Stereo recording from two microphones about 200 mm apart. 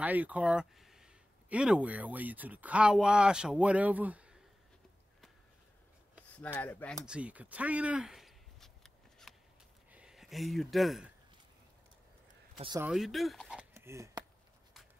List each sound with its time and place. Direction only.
0.0 s speech: 10° right (ahead or behind)
6.4 s speech: 10° left (ahead or behind)
7.1 s a sound: 5° right (ahead or behind)
12.5 s speech: 25° right (ahead or behind)
12.8 s speech: centre (ahead or behind)
13.7 s a sound: 15° right (ahead or behind)